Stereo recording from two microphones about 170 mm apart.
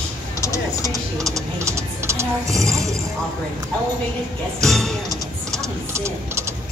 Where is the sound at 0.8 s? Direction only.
20° right (ahead or behind).